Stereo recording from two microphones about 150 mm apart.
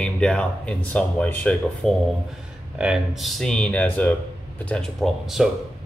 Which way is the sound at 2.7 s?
5° right (ahead or behind).